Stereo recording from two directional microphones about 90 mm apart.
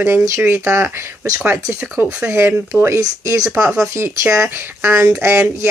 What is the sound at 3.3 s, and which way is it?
Speech, 30° right (ahead or behind).